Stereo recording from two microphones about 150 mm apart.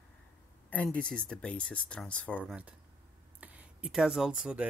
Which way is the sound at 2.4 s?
10° right (ahead or behind).